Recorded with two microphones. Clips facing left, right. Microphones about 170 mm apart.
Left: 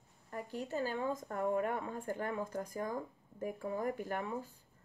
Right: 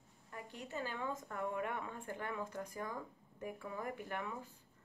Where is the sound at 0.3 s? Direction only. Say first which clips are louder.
Left 7 dB; 40° left (ahead or behind).